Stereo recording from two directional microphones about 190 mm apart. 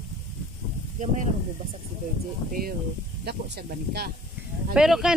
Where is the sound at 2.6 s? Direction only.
55° right (ahead or behind).